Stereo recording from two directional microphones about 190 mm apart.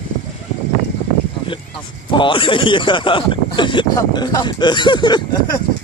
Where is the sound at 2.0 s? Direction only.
25° left (ahead or behind).